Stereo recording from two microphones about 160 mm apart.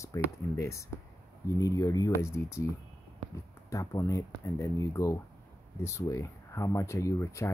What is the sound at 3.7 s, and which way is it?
Speech, 20° left (ahead or behind).